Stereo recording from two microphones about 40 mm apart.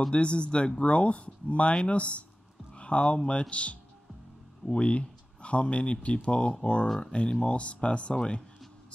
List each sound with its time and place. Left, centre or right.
0.1 s speech: left
2.7 s music: left
3.3 s speech: left
4.7 s speech: left